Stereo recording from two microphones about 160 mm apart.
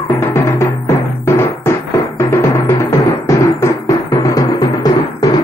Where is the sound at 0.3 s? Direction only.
15° left (ahead or behind).